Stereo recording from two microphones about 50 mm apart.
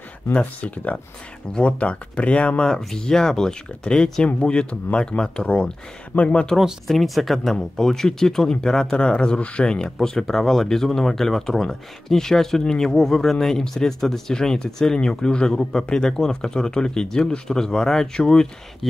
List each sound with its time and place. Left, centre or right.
0.3 s speech: left
6.9 s speech: centre